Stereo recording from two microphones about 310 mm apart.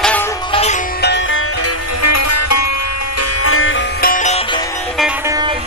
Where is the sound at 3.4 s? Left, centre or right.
Left.